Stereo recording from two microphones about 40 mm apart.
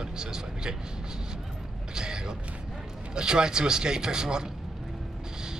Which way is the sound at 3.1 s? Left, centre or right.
Centre.